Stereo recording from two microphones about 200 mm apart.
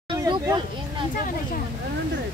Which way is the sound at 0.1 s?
20° right (ahead or behind).